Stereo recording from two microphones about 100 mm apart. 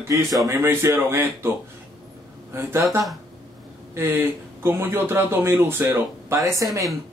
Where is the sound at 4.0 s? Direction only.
20° right (ahead or behind).